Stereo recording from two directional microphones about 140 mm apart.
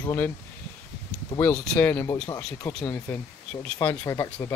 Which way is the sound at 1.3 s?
25° left (ahead or behind).